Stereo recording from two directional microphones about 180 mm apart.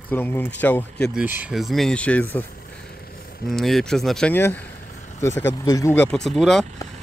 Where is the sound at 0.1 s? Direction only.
10° left (ahead or behind).